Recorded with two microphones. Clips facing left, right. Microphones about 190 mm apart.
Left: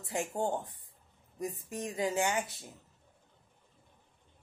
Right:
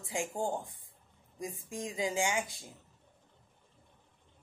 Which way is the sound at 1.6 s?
10° right (ahead or behind).